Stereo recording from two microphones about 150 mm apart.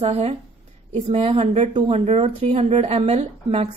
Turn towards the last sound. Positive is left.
turn(degrees=-45)  # may be behind; listen again after turning